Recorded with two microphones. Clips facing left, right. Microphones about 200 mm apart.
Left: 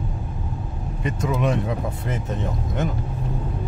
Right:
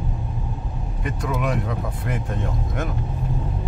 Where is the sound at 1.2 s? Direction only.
25° left (ahead or behind).